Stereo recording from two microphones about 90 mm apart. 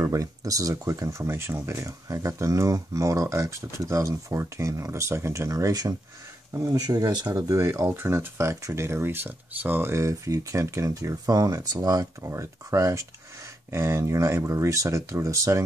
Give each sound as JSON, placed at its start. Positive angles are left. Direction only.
{"t": 0.0, "sound": "speech", "side_deg": -35}